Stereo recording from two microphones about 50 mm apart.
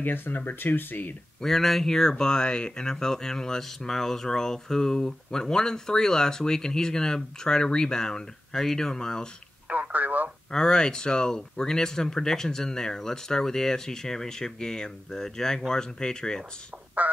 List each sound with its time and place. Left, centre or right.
0.0 s speech: left
1.4 s speech: centre
9.7 s telephone: right
10.5 s speech: centre